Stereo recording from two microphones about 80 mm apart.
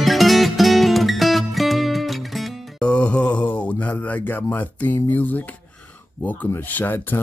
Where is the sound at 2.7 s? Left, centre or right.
Centre.